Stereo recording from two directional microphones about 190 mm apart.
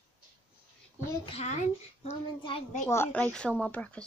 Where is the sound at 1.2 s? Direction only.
35° left (ahead or behind).